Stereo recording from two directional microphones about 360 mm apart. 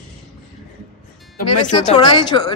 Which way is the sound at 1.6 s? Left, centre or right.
Centre.